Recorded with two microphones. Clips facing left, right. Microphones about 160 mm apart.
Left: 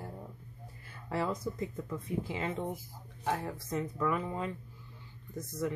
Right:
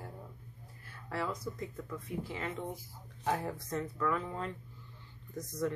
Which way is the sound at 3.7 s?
15° left (ahead or behind).